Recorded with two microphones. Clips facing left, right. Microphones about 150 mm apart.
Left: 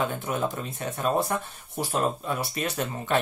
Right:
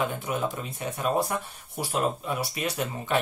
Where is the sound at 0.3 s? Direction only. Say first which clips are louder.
Left 1 dB; 10° right (ahead or behind).